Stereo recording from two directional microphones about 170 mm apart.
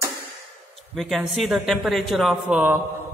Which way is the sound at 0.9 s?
Centre (ahead or behind).